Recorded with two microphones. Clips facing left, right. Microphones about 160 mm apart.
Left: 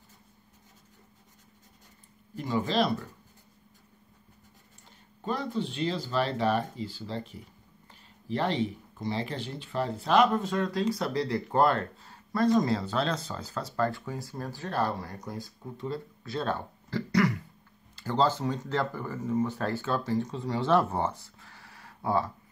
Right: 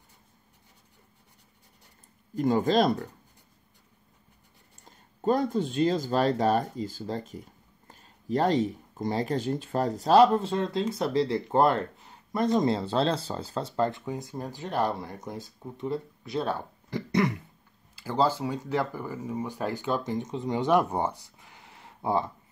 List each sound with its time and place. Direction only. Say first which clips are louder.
2.3 s speech: right 5 dB; 45° right (ahead or behind)
4.8 s speech: right 8 dB; 45° right (ahead or behind); by 17.4 s 20° right (ahead or behind)
17.9 s speech: right 1 dB; 10° right (ahead or behind)